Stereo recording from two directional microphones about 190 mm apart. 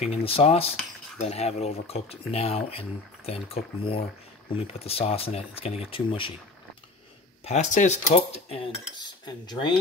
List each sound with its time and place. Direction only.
0.1 s speech: 30° left (ahead or behind)
7.4 s speech: 40° left (ahead or behind); by 9.8 s 25° left (ahead or behind)